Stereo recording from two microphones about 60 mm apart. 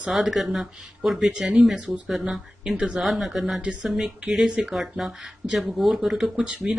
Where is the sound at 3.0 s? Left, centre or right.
Centre.